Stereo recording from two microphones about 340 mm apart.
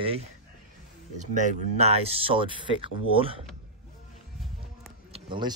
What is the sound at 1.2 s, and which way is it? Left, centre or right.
Speech, right.